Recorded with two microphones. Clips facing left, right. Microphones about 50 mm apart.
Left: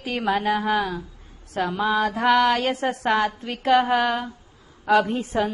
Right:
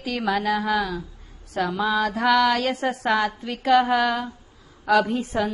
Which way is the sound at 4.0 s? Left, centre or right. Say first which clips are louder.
Even; centre.